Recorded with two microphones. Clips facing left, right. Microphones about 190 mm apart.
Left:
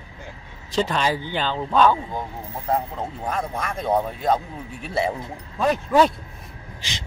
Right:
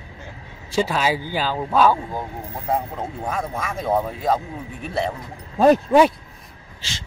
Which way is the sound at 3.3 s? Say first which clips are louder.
Even; 5° right (ahead or behind).